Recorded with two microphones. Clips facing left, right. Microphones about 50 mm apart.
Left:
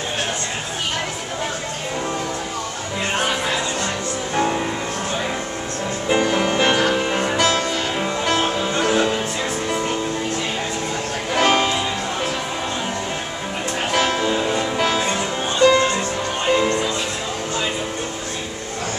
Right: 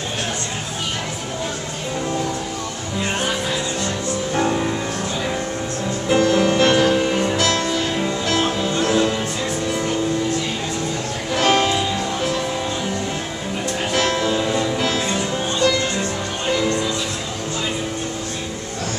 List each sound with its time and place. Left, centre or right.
4.4 s music: centre
6.0 s music: centre
11.3 s music: centre
13.9 s music: left